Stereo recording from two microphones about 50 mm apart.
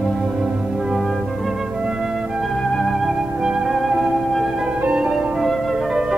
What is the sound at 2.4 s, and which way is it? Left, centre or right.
Music, centre.